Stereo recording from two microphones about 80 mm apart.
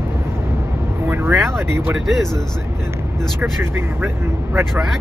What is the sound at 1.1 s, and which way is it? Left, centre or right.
Speech, right.